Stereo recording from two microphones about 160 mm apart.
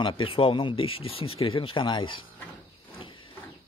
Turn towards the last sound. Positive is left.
turn(degrees=35)  # may be behind; listen again after turning